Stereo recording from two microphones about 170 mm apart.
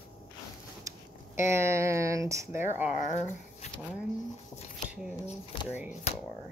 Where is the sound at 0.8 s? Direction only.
15° right (ahead or behind).